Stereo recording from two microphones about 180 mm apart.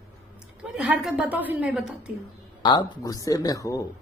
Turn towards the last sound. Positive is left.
turn(degrees=20)  # may be behind; listen again after turning